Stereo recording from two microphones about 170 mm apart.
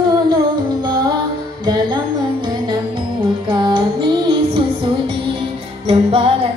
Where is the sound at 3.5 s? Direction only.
25° right (ahead or behind).